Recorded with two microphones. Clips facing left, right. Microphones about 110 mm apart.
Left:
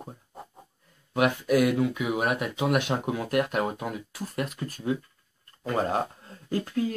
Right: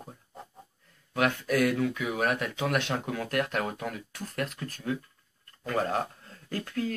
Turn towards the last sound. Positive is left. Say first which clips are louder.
# left 4 dB
turn(degrees=20)  # may be behind; listen again after turning